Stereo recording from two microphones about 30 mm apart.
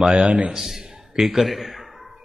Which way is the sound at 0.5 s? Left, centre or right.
Centre.